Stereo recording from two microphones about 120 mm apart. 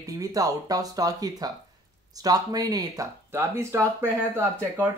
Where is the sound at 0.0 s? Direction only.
30° right (ahead or behind).